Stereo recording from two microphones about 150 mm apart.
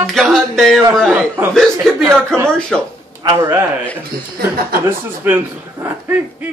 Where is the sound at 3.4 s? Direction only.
15° right (ahead or behind).